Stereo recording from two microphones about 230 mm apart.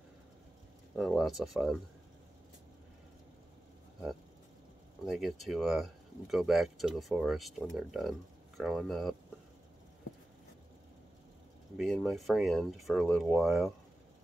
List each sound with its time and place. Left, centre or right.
0.9 s speech: centre
5.0 s speech: centre
11.7 s speech: centre